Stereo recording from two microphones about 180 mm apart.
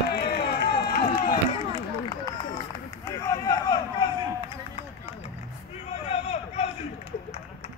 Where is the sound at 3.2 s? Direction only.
20° left (ahead or behind).